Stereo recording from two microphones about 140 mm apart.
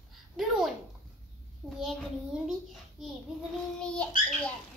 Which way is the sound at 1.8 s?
5° right (ahead or behind).